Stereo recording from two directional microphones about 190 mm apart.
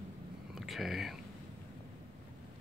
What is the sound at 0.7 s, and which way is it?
Speech, centre (ahead or behind).